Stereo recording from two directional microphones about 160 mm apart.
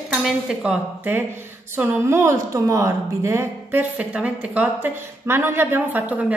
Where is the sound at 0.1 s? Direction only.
5° right (ahead or behind).